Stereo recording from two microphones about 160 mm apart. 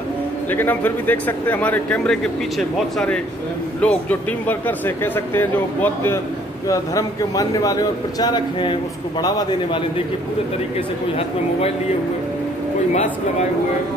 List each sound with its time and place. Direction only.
0.5 s speech: 10° left (ahead or behind)
3.8 s a man's voice: 10° left (ahead or behind); by 10.0 s 30° left (ahead or behind)
12.9 s speech: 45° left (ahead or behind)